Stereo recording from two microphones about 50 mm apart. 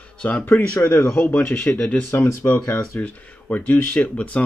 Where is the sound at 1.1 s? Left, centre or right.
Left.